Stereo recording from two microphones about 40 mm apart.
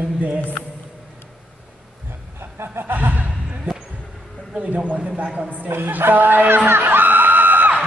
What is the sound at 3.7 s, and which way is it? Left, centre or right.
Basketball bounce, right.